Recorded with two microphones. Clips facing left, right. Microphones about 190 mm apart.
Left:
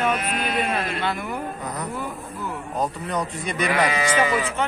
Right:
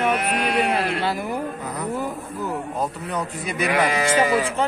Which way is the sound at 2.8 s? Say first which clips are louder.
Left 5 dB; 5° right (ahead or behind).